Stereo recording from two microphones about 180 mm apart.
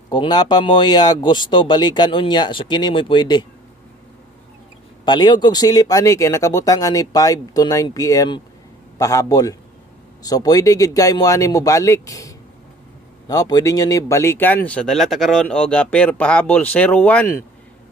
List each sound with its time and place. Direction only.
0.1 s speech: 25° left (ahead or behind)
5.0 s speech: 25° left (ahead or behind)